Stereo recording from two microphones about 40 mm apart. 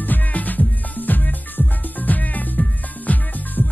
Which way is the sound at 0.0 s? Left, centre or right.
Left.